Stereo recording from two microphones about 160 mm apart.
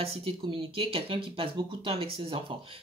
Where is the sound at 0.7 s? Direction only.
35° right (ahead or behind).